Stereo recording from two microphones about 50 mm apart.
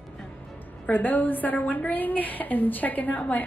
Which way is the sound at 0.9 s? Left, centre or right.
Left.